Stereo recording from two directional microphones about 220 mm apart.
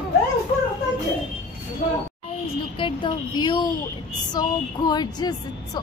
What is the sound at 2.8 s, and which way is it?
A woman's voice, 20° left (ahead or behind).